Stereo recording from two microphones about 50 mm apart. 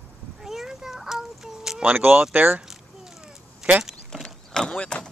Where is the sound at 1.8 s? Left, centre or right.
Right.